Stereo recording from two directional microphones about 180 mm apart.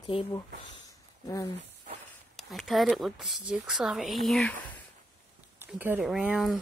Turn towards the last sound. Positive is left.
turn(degrees=-5)  # may be behind; listen again after turning